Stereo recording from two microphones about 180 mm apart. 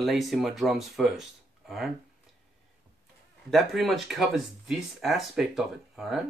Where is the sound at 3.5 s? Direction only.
Centre (ahead or behind).